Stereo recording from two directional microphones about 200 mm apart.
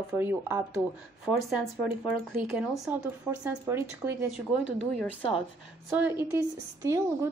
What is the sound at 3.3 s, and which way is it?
Speech, 10° right (ahead or behind).